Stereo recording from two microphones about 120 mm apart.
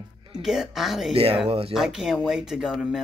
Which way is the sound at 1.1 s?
50° right (ahead or behind).